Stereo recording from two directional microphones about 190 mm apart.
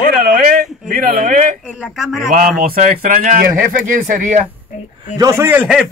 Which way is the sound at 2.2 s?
45° right (ahead or behind).